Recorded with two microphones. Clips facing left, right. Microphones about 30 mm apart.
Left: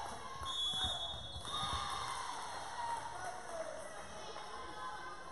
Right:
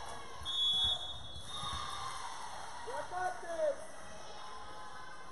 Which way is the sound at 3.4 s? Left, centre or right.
Centre.